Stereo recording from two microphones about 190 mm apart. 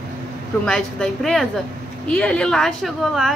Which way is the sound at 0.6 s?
5° left (ahead or behind).